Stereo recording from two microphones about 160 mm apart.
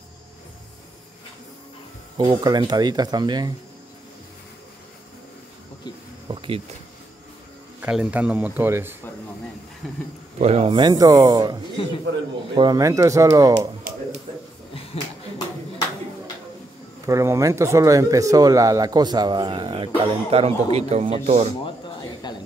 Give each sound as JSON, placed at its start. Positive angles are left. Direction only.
{"t": 2.1, "sound": "speech", "side_deg": -30}
{"t": 6.2, "sound": "a sound", "side_deg": -30}
{"t": 7.8, "sound": "speech", "side_deg": -5}
{"t": 10.4, "sound": "speech", "side_deg": -40}
{"t": 12.5, "sound": "speech", "side_deg": -25}
{"t": 17.0, "sound": "speech", "side_deg": -20}
{"t": 21.6, "sound": "a sound", "side_deg": 30}